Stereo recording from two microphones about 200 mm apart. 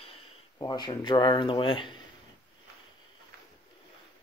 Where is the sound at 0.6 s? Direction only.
20° left (ahead or behind).